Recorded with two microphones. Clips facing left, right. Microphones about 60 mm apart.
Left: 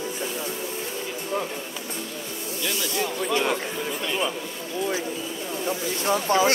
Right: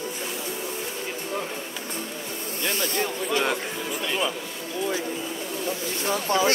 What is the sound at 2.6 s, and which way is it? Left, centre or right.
Speech, right.